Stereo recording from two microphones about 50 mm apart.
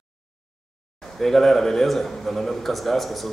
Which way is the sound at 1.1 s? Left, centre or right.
Centre.